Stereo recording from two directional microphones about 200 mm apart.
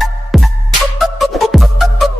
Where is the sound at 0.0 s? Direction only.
Centre (ahead or behind).